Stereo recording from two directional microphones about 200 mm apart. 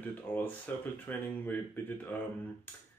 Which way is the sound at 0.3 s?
10° left (ahead or behind).